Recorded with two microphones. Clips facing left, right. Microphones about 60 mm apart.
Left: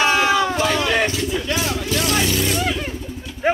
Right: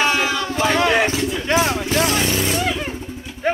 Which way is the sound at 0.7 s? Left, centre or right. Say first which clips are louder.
Right 3 dB; right.